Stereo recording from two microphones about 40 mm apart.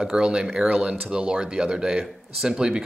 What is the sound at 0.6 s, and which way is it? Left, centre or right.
Speech, right.